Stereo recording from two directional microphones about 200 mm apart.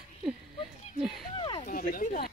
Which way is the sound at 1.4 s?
25° left (ahead or behind).